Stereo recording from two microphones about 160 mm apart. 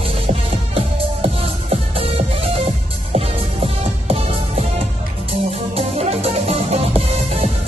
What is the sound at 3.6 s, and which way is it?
Music, 40° right (ahead or behind).